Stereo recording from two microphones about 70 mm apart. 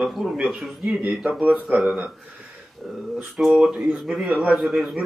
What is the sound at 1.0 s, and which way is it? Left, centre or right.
Speech, right.